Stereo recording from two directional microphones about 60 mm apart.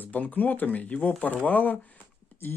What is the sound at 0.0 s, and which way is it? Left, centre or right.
Speech, left.